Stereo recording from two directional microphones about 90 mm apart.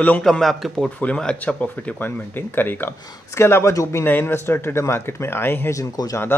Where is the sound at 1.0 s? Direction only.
10° left (ahead or behind).